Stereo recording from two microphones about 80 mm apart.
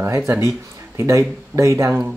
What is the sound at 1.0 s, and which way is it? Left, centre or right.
Speech, right.